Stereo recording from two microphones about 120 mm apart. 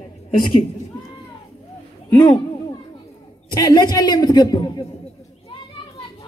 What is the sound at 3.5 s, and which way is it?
A man's voice, 35° left (ahead or behind).